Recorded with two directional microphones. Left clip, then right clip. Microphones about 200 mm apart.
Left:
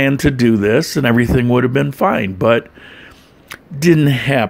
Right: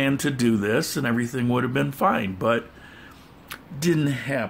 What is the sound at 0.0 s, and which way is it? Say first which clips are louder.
Speech: left 9 dB; 30° left (ahead or behind).